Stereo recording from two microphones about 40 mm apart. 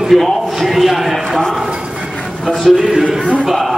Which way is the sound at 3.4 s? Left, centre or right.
Centre.